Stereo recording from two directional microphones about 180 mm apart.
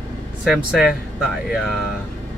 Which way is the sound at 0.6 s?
Centre (ahead or behind).